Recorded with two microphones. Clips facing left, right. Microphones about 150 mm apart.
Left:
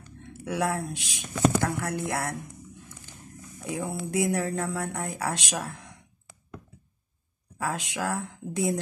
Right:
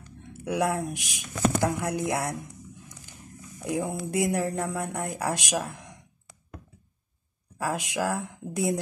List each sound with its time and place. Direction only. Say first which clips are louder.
0.2 s speech: right 2 dB; 15° right (ahead or behind)
3.7 s speech: right 1 dB; 15° right (ahead or behind)
7.5 s speech: right 2 dB; 10° right (ahead or behind)